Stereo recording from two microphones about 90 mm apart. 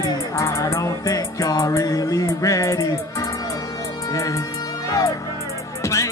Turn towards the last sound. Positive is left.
turn(degrees=35)  # may be behind; listen again after turning